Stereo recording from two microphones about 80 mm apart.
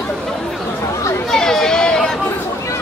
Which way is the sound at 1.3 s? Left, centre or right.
Centre.